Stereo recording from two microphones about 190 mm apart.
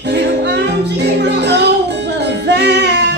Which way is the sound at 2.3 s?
65° right (ahead or behind).